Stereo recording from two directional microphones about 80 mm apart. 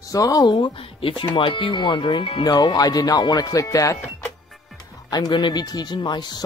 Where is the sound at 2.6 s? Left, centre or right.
Left.